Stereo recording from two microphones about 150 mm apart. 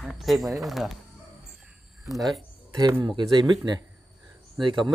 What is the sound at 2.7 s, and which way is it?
A man's voice, 20° right (ahead or behind).